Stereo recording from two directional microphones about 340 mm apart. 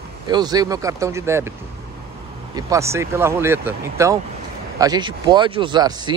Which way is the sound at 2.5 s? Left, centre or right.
Centre.